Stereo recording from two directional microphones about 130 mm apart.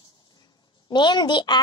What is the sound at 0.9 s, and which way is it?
Speech, 35° left (ahead or behind).